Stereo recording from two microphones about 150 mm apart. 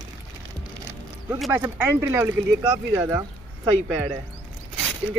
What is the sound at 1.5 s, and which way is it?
Speech, 15° right (ahead or behind).